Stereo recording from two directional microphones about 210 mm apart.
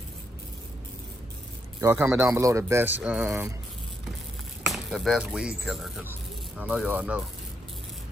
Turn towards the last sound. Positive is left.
turn(degrees=-5)  # may be behind; listen again after turning